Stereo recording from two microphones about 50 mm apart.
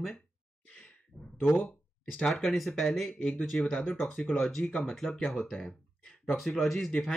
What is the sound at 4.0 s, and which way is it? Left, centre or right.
Speech, centre.